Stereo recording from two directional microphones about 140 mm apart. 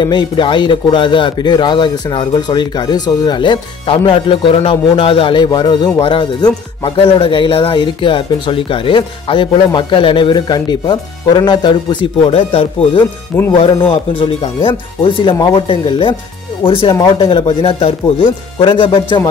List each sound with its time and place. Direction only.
0.0 s speech: 35° left (ahead or behind)
13.6 s speech: 40° left (ahead or behind)